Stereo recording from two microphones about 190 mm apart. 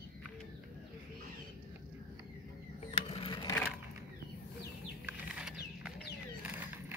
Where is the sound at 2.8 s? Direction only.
30° left (ahead or behind).